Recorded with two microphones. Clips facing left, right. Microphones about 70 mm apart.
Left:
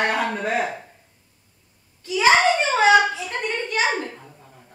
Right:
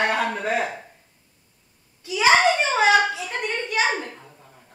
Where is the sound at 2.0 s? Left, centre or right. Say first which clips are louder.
Left 1 dB; centre.